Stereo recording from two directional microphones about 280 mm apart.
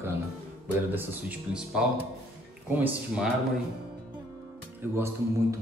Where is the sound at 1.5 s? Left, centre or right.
Centre.